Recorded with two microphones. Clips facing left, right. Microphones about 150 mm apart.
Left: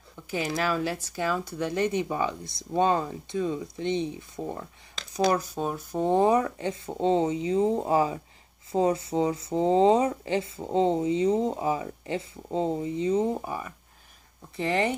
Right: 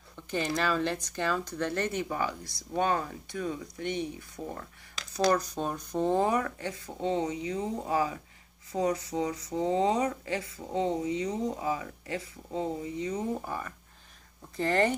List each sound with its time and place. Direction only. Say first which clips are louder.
0.3 s speech: left 1 dB; 5° left (ahead or behind); by 4.6 s 25° left (ahead or behind)
5.5 s speech: left 2 dB; 5° left (ahead or behind)
14.6 s speech: even; centre (ahead or behind)